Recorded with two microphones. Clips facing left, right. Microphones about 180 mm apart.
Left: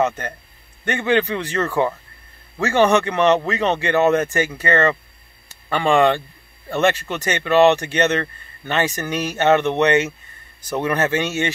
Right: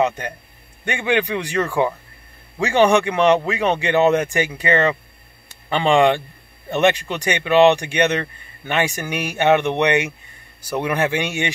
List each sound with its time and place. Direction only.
0.0 s speech: 15° right (ahead or behind)